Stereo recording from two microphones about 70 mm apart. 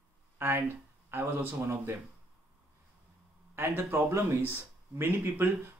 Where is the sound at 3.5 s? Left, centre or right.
Right.